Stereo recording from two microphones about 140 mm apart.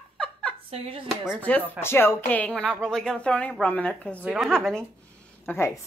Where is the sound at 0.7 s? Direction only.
40° right (ahead or behind).